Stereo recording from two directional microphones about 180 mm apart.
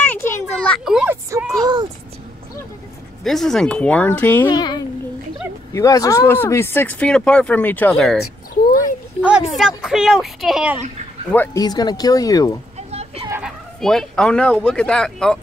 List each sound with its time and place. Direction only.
0.0 s a sound: 10° left (ahead or behind)
0.7 s speech: 5° right (ahead or behind)
1.5 s speech: 20° right (ahead or behind)
3.3 s speech: centre (ahead or behind)
4.5 s speech: 25° left (ahead or behind); by 10.8 s 5° right (ahead or behind)
11.3 s speech: 10° left (ahead or behind)
11.6 s speech: 20° left (ahead or behind)
12.9 s a sound: 35° right (ahead or behind)
13.4 s speech: centre (ahead or behind)